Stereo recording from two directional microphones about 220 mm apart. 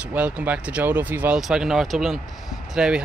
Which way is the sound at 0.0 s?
5° right (ahead or behind).